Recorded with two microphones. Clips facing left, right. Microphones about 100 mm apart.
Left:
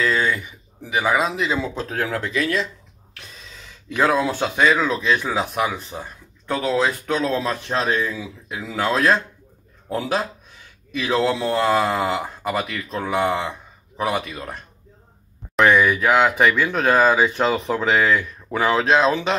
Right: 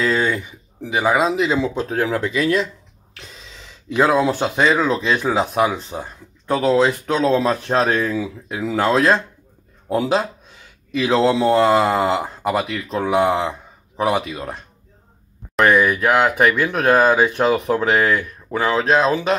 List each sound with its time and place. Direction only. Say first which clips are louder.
0.0 s speech: right 2 dB; 30° right (ahead or behind)
3.9 s speech: right 3 dB; 15° right (ahead or behind)
7.6 s speech: right 4 dB; 40° right (ahead or behind)
8.7 s speech: right 3 dB; 25° right (ahead or behind)
15.5 s speech: right 1 dB; 5° right (ahead or behind)
18.5 s speech: right 1 dB; centre (ahead or behind)